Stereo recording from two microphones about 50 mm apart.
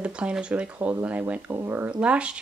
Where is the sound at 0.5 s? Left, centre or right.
Right.